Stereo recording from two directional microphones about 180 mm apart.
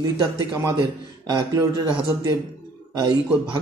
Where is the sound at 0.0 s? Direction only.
20° right (ahead or behind).